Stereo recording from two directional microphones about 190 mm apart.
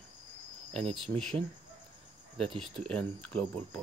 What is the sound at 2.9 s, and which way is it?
Speech, 5° left (ahead or behind).